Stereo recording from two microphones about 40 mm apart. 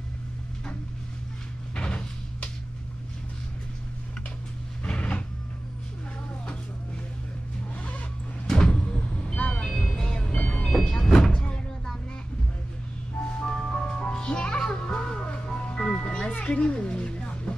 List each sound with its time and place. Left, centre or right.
1.8 s door: left
4.8 s a sound: left
8.5 s vehicle: left
10.4 s vehicle: left
11.0 s vehicle: centre
13.4 s music: left